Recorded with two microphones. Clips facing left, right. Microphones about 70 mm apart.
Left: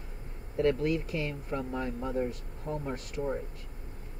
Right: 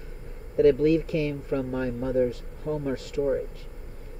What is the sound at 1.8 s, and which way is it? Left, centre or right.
Speech, right.